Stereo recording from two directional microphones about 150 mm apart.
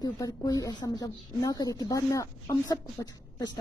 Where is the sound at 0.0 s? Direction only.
25° left (ahead or behind).